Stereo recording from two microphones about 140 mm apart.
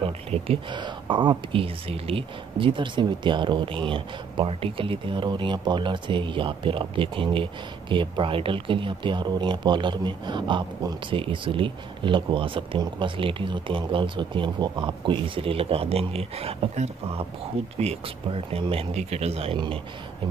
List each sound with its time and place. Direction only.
0.0 s speech: 45° right (ahead or behind)